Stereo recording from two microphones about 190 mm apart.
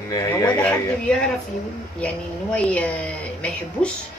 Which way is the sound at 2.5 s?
5° left (ahead or behind).